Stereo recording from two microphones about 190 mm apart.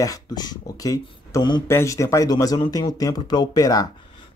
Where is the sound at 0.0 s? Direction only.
20° left (ahead or behind).